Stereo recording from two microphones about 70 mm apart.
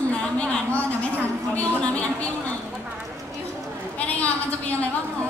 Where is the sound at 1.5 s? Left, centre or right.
Centre.